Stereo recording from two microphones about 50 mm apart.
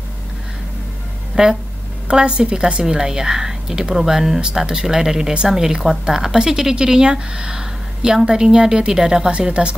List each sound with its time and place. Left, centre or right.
1.3 s speech: centre
9.3 s speech: right